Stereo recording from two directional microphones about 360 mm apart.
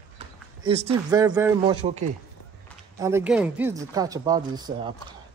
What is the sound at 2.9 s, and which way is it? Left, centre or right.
Speech, centre.